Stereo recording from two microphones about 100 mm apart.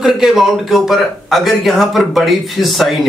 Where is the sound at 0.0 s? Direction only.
5° right (ahead or behind).